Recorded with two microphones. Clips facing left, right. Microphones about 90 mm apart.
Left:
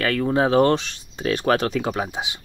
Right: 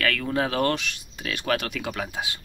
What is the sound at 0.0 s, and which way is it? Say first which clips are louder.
Speech: left 5 dB; 25° left (ahead or behind).